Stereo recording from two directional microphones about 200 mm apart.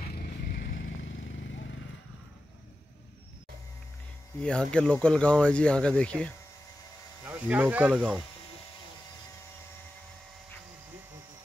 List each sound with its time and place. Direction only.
0.1 s vehicle: 50° left (ahead or behind)
4.4 s speech: 5° left (ahead or behind)
7.2 s speech: 10° right (ahead or behind)